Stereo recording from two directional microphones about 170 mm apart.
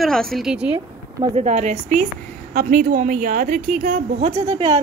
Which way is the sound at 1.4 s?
45° right (ahead or behind).